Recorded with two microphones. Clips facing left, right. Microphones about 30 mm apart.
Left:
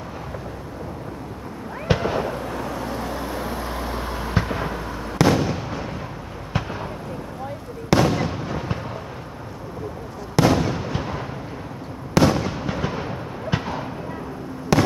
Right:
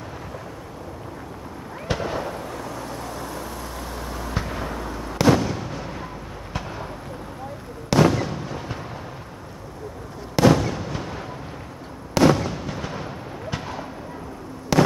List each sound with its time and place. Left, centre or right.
1.9 s fireworks: centre
6.5 s a sound: centre
7.9 s fireworks: centre
10.4 s fireworks: centre
14.7 s fireworks: centre